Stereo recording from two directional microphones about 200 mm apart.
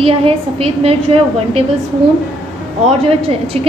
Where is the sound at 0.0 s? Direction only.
30° right (ahead or behind).